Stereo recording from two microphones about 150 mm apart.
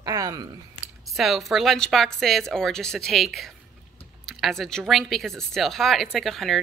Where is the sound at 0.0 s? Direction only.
25° right (ahead or behind).